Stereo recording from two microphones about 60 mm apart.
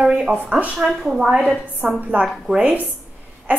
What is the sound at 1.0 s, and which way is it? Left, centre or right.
Speech, centre.